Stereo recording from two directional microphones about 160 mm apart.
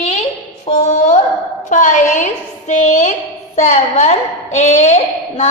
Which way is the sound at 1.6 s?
50° left (ahead or behind).